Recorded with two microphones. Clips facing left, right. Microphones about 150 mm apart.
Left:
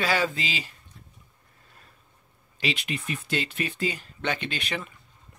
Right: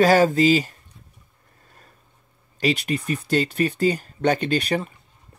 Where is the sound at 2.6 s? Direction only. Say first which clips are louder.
Right 8 dB; 40° right (ahead or behind).